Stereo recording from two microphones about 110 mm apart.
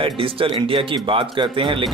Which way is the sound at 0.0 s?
55° right (ahead or behind).